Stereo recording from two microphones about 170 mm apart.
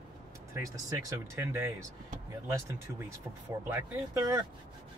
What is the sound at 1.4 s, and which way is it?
Speech, 15° right (ahead or behind).